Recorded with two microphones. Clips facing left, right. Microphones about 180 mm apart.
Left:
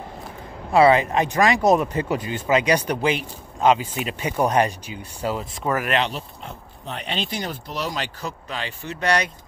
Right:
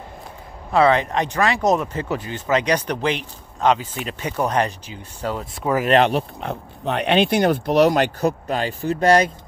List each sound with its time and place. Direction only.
0.7 s speech: 10° left (ahead or behind)
6.0 s speech: 60° right (ahead or behind); by 9.3 s 45° right (ahead or behind)